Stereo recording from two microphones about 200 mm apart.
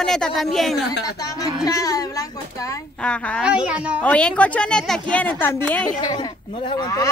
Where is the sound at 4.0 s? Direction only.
5° left (ahead or behind).